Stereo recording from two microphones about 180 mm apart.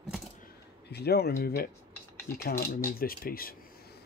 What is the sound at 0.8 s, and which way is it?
Speech, 65° left (ahead or behind).